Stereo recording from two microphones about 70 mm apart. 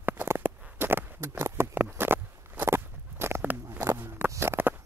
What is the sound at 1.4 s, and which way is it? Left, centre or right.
Patter, right.